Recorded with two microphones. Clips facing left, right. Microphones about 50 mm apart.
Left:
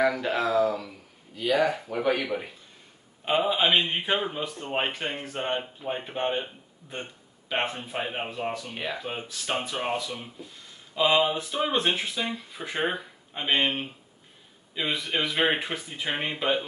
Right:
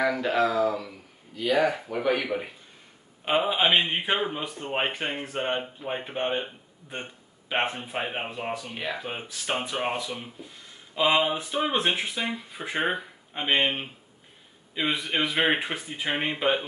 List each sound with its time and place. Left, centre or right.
0.1 s a man's voice: centre
8.7 s speech: centre
9.0 s speech: centre